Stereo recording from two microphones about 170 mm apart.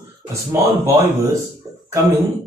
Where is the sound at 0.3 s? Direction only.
15° right (ahead or behind).